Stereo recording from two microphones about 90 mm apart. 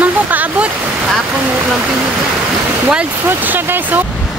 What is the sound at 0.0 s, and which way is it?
Waterfall, 20° right (ahead or behind).